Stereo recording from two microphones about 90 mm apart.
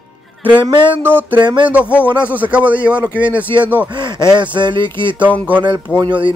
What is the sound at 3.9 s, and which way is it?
Speech, 55° right (ahead or behind).